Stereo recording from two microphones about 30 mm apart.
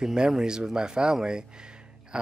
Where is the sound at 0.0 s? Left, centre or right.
Right.